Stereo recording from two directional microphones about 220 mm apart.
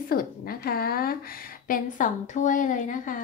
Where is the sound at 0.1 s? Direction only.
40° left (ahead or behind).